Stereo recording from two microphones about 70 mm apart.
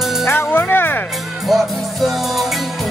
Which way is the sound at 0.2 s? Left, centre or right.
Left.